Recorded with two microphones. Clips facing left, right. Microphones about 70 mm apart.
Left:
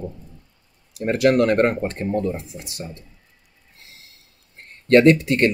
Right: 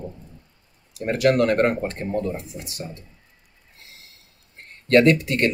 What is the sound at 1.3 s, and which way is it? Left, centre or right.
Speech, left.